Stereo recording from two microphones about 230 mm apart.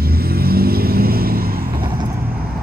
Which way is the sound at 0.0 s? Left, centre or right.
Right.